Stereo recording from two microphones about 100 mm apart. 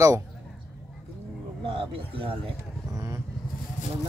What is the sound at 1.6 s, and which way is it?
Speech, 65° right (ahead or behind).